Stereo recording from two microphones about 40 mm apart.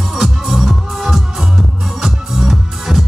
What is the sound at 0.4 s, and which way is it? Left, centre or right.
Music, centre.